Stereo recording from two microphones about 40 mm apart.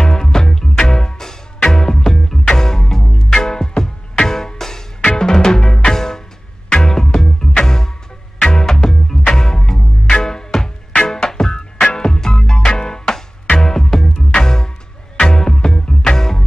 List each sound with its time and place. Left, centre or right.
0.0 s music: centre